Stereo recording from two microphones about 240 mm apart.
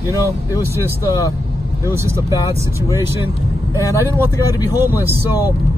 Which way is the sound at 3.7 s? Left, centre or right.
Centre.